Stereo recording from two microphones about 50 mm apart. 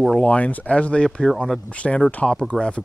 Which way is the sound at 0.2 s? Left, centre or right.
Left.